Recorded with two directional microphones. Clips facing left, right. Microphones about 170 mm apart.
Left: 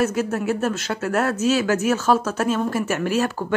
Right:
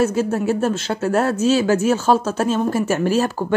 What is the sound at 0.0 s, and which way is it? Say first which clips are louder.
Speech: right 3 dB; 30° right (ahead or behind).